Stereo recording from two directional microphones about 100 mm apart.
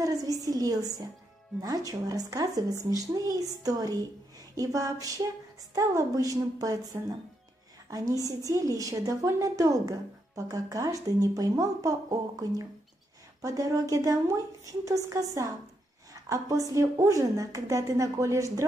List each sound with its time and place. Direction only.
0.0 s speech: 35° right (ahead or behind)